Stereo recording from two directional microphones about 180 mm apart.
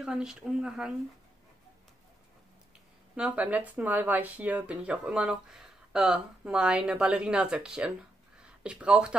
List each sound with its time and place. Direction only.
0.0 s speech: 5° right (ahead or behind)
3.2 s speech: 5° right (ahead or behind)